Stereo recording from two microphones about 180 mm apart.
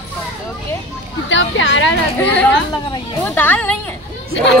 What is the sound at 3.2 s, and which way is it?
Speech, 10° left (ahead or behind).